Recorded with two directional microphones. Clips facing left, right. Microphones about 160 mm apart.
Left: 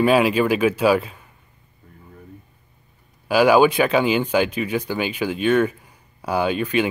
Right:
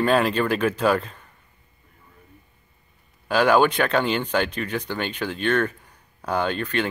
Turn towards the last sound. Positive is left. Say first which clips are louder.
# left 4 dB
turn(degrees=10)  # may be behind; listen again after turning